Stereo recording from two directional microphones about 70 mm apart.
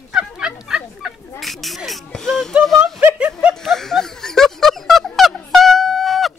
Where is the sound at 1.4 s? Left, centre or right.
Centre.